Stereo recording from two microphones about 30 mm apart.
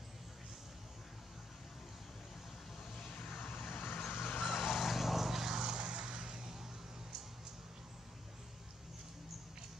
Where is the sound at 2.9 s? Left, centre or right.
Left.